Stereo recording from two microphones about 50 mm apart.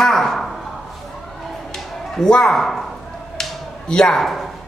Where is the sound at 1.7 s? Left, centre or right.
Centre.